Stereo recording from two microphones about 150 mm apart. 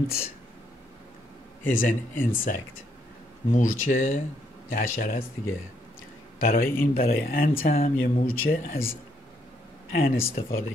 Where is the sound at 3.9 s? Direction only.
60° left (ahead or behind).